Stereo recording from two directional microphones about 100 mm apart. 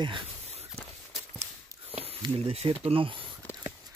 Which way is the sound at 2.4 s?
80° right.